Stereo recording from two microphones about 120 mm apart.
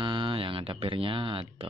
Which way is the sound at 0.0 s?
45° right (ahead or behind).